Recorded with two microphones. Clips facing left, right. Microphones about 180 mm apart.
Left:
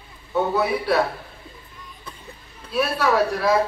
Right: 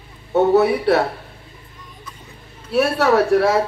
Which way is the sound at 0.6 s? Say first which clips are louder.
Right 5 dB; 70° right (ahead or behind).